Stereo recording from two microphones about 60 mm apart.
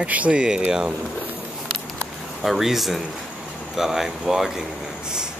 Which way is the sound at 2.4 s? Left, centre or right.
Centre.